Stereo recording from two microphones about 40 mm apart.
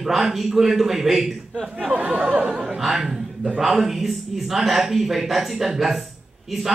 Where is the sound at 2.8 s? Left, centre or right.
Centre.